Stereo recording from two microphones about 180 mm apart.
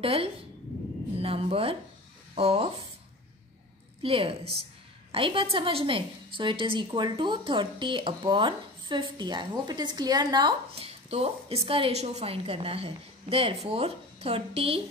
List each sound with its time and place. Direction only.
0.0 s a woman's voice: 30° right (ahead or behind)
4.0 s a woman's voice: 30° right (ahead or behind)